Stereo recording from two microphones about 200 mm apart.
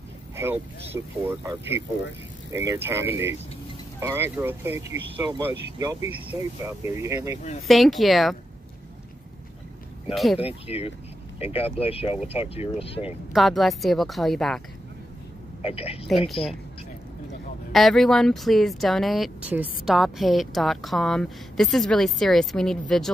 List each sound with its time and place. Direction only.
0.4 s speech: 10° right (ahead or behind)
7.6 s speech: centre (ahead or behind)
10.1 s speech: centre (ahead or behind)
10.4 s speech: 30° left (ahead or behind)
13.3 s speech: centre (ahead or behind)
15.6 s speech: 30° left (ahead or behind)
17.7 s speech: centre (ahead or behind)